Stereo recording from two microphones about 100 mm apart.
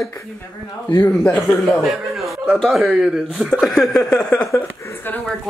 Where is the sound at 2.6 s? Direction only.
Centre (ahead or behind).